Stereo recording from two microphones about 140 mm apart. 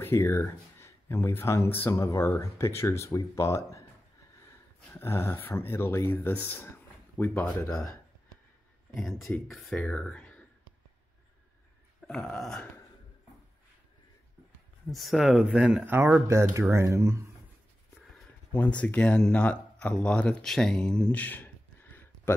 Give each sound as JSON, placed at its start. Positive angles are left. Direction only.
{"t": 0.0, "sound": "speech", "side_deg": 20}
{"t": 4.9, "sound": "speech", "side_deg": 15}
{"t": 9.2, "sound": "speech", "side_deg": 0}
{"t": 12.1, "sound": "burping", "side_deg": 5}
{"t": 14.9, "sound": "speech", "side_deg": 0}
{"t": 18.1, "sound": "speech", "side_deg": 10}